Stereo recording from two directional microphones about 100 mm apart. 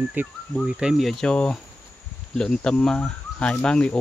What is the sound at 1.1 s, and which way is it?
Speech, 5° left (ahead or behind).